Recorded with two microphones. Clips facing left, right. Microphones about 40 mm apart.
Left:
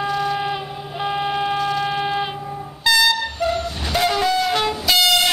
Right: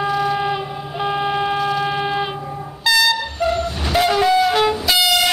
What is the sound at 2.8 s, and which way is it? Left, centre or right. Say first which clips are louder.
Air horn: even; centre.